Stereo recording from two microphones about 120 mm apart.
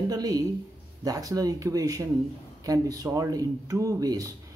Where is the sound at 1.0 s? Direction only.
30° right (ahead or behind).